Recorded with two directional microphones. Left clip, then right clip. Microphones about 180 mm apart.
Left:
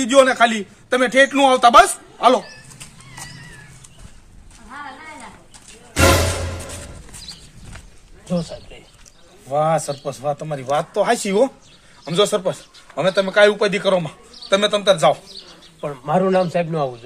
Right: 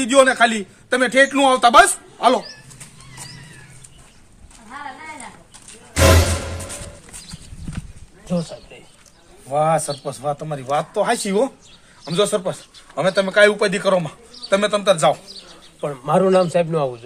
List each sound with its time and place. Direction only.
0.0 s a man's voice: 5° left (ahead or behind)
4.6 s a sound: 55° right (ahead or behind)
8.3 s speech: centre (ahead or behind)
9.5 s a man's voice: 15° left (ahead or behind)
12.9 s a man's voice: 5° left (ahead or behind)
15.8 s a man's voice: 50° right (ahead or behind); by 17.0 s 25° right (ahead or behind)